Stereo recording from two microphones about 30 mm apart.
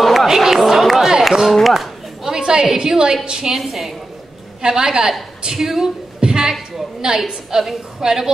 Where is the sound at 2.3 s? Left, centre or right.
Right.